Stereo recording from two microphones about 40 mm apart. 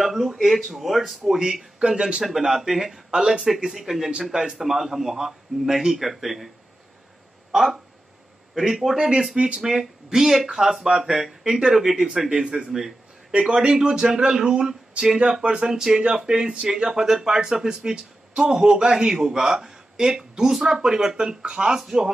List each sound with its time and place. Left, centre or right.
0.0 s a sound: centre
0.4 s speech: centre
2.2 s speech: centre
8.5 s speech: centre
13.3 s a man's voice: right
13.7 s speech: centre